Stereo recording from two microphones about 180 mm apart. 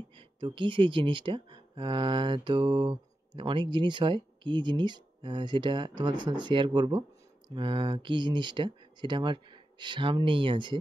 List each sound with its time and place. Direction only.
0.4 s speech: 25° right (ahead or behind)